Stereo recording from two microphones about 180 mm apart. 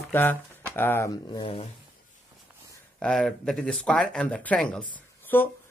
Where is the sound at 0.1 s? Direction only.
10° left (ahead or behind); by 1.7 s 30° left (ahead or behind).